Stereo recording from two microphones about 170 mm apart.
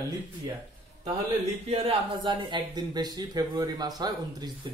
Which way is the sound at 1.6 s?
35° right (ahead or behind).